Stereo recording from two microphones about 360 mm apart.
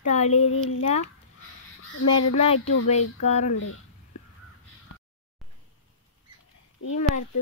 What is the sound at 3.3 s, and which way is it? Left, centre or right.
Speech, centre.